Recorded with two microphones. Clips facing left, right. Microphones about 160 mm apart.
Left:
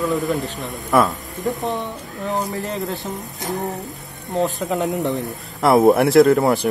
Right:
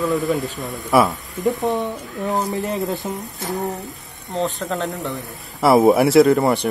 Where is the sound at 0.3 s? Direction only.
Centre (ahead or behind).